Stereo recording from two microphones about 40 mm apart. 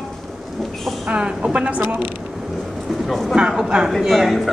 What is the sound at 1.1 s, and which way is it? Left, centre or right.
Speech, right.